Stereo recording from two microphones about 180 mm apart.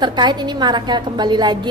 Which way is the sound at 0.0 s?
25° right (ahead or behind).